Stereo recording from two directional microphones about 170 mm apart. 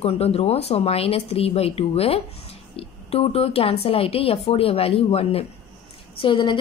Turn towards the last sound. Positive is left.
turn(degrees=30)  # may be behind; listen again after turning